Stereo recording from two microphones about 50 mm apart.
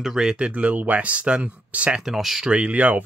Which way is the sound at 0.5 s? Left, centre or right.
Right.